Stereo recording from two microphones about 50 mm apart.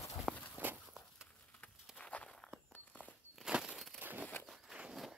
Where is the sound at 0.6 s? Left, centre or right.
Right.